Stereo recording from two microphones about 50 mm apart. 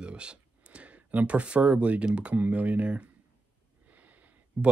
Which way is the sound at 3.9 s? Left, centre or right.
Right.